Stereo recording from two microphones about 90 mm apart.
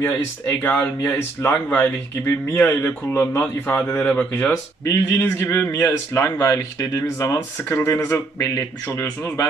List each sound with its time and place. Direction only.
0.6 s speech: 20° left (ahead or behind)
4.8 s speech: 30° left (ahead or behind)